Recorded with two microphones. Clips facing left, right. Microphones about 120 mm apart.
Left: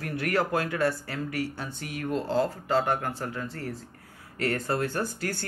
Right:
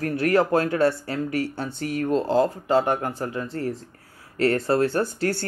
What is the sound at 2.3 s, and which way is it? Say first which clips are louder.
Speech: right 4 dB; 20° right (ahead or behind).